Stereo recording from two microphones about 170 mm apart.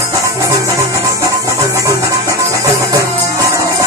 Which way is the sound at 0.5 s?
20° right (ahead or behind).